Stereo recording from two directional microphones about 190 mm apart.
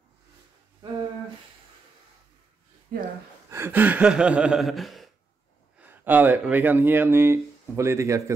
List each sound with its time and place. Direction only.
2.9 s speech: 50° right (ahead or behind)
3.4 s speech: 15° right (ahead or behind)